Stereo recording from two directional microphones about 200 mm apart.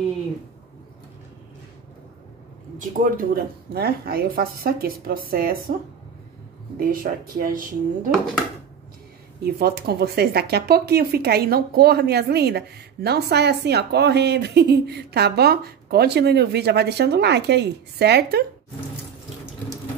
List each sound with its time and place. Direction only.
2.8 s speech: 40° right (ahead or behind)
6.8 s speech: 45° right (ahead or behind)
9.4 s speech: 50° right (ahead or behind)